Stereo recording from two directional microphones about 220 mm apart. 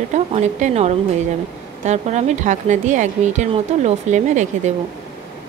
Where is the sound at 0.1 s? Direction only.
30° right (ahead or behind).